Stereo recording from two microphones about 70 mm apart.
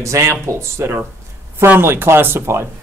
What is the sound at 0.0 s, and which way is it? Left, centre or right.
Speech, right.